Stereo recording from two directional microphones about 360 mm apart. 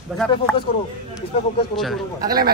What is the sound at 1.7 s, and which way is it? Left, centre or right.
Speech, centre.